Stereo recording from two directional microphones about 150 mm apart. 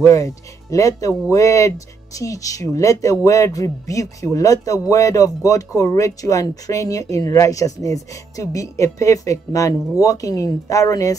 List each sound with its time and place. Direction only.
0.0 s speech: 20° left (ahead or behind)